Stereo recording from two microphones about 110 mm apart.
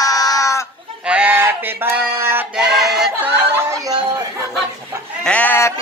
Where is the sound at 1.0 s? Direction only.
10° right (ahead or behind).